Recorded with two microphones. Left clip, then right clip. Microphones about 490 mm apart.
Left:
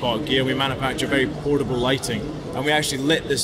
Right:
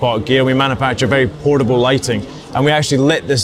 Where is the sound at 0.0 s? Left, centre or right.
Right.